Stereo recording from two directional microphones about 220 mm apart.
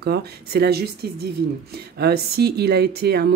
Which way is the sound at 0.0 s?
45° right (ahead or behind).